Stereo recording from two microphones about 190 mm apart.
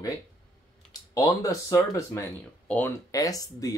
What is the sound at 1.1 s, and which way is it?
Speech, 15° left (ahead or behind).